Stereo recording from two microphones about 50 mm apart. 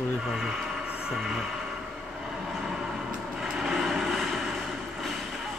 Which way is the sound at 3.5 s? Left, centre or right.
Centre.